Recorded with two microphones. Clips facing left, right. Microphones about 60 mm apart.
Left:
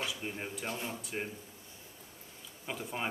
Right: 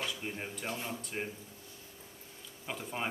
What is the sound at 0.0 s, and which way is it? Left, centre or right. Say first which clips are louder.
Speech: even; centre.